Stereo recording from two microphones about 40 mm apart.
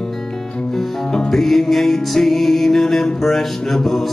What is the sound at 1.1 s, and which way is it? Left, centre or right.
Music, centre.